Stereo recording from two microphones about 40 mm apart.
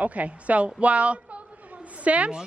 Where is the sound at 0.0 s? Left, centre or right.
Right.